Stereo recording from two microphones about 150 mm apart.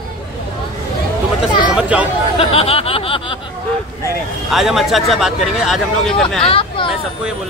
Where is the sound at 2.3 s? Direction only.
40° left (ahead or behind).